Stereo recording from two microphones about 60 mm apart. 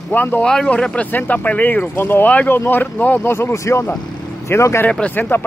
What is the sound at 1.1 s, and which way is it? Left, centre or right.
Speech, left.